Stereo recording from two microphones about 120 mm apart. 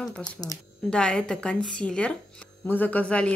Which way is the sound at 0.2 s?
30° left (ahead or behind).